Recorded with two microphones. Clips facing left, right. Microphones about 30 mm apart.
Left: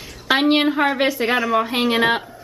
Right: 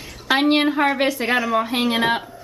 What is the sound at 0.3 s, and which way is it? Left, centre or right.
A woman's voice, centre.